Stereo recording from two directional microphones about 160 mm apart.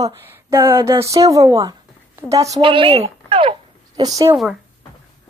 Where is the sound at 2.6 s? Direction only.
35° right (ahead or behind).